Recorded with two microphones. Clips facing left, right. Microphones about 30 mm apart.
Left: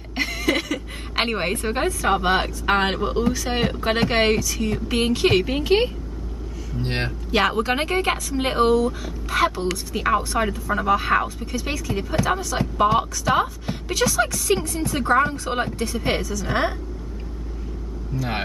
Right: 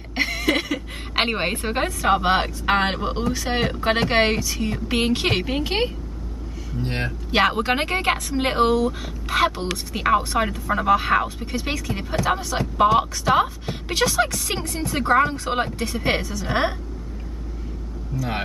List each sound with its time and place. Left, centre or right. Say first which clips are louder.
0.1 s a sound: right 1 dB; centre
1.8 s a woman's voice: right 2 dB; centre
6.8 s speech: left 1 dB; left
7.2 s a woman's voice: right 1 dB; centre
11.5 s speech: right 1 dB; centre
12.5 s a woman's voice: right 2 dB; centre
13.8 s a woman's voice: even; right
16.4 s a woman's voice: right 1 dB; centre
18.1 s speech: even; left